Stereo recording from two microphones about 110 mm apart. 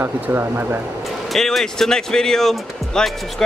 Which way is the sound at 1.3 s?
Centre (ahead or behind).